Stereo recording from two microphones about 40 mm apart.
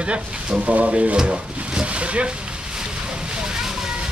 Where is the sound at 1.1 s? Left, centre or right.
Right.